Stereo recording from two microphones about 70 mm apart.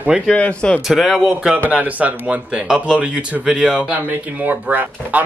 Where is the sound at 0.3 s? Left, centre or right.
Centre.